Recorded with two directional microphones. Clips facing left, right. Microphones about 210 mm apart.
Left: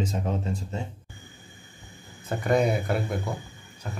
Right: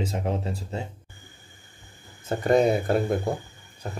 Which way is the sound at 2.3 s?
30° right (ahead or behind).